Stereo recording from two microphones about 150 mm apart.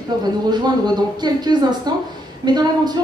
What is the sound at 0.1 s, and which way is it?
A woman's voice, 25° right (ahead or behind).